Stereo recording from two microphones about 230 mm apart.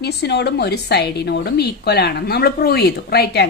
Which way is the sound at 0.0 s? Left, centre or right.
Left.